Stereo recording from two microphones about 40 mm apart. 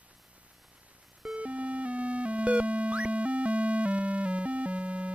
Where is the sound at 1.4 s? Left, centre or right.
Right.